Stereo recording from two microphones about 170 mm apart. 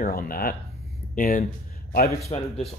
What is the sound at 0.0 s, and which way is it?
Speech, 60° left (ahead or behind).